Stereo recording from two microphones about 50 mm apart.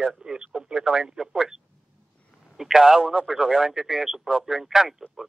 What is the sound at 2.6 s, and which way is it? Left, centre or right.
Speech, centre.